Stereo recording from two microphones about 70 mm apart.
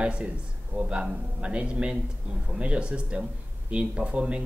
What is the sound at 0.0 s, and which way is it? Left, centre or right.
A man's voice, centre.